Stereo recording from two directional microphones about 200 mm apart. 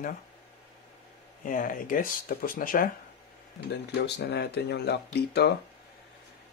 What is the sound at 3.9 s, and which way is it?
Speech, 55° left (ahead or behind).